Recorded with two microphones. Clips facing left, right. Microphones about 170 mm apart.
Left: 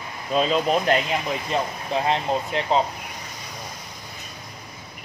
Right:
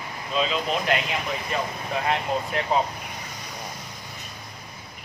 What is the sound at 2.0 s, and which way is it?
Speech, 25° left (ahead or behind).